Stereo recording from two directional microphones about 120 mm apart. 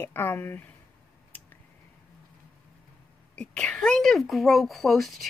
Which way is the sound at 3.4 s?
10° left (ahead or behind).